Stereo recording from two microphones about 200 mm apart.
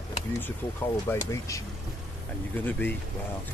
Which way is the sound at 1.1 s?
15° left (ahead or behind).